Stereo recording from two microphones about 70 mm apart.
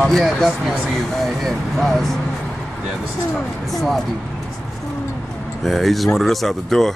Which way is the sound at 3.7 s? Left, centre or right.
Centre.